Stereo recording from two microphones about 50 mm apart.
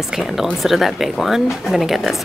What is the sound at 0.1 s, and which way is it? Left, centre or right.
Speech, centre.